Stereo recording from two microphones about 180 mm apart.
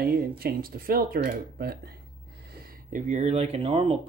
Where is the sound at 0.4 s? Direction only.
55° right (ahead or behind).